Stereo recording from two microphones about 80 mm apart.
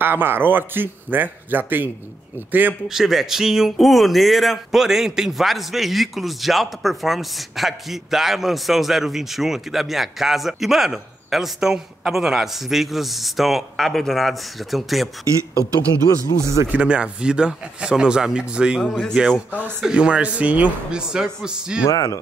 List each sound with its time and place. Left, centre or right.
0.0 s speech: right
2.9 s speech: centre
15.2 s speech: right
16.6 s speech: centre
21.8 s speech: left